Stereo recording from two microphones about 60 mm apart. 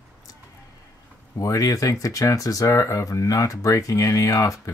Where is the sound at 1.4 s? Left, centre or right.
Left.